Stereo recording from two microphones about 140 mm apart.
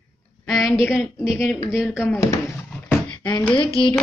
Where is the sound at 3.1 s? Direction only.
30° left (ahead or behind).